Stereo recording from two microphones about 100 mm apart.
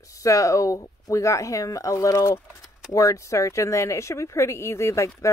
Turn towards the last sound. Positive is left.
turn(degrees=30)  # may be behind; listen again after turning